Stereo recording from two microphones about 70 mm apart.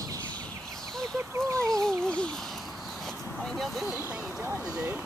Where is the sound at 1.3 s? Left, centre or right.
Right.